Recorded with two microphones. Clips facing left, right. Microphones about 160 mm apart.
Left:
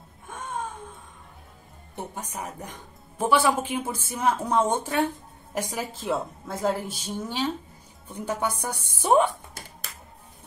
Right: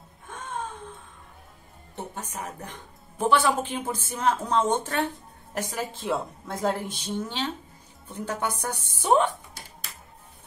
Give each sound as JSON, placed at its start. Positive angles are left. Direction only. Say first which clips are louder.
{"t": 0.3, "sound": "music", "louder": "left 1 dB", "side_deg": 10}
{"t": 2.1, "sound": "a woman's voice", "louder": "left 1 dB", "side_deg": 10}